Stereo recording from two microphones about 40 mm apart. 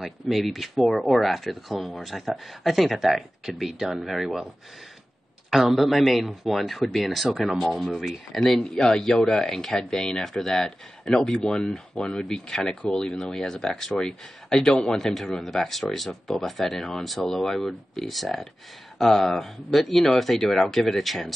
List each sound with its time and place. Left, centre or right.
0.0 s speech: centre
5.5 s speech: centre
8.8 s speech: centre
17.0 s speech: centre